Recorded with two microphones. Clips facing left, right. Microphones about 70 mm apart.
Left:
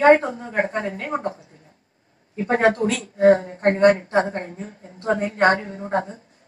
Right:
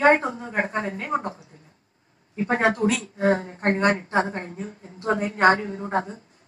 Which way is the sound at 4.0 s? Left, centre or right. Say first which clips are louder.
Left 3 dB; left.